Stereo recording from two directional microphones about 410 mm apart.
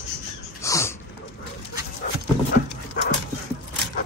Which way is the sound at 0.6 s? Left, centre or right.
Centre.